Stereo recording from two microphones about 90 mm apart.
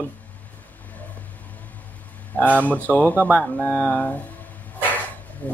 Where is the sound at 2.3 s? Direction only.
15° left (ahead or behind).